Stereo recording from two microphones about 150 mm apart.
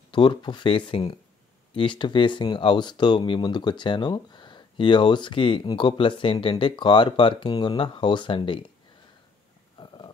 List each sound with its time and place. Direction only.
0.1 s speech: 30° left (ahead or behind)
9.8 s purr: 30° left (ahead or behind)